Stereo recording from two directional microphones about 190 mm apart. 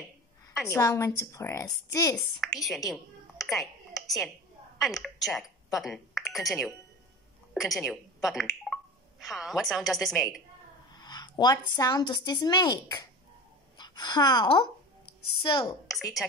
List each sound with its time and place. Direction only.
0.7 s a woman's voice: 15° left (ahead or behind)
2.4 s a woman's voice: centre (ahead or behind)
3.4 s a sound: centre (ahead or behind)
4.7 s a woman's voice: centre (ahead or behind)
11.0 s speech: 20° left (ahead or behind)
13.7 s a sound: 20° left (ahead or behind)
15.9 s a woman's voice: centre (ahead or behind)